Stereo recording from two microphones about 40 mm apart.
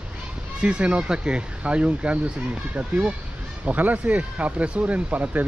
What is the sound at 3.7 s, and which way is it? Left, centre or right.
Speech, right.